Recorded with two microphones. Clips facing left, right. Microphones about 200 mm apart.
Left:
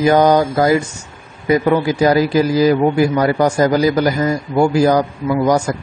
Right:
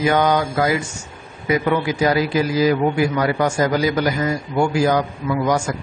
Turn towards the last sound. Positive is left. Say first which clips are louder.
# left 5 dB
turn(degrees=35)  # may be behind; listen again after turning